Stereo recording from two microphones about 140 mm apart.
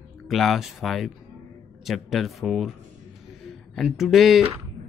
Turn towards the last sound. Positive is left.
turn(degrees=0)  # may be behind; listen again after turning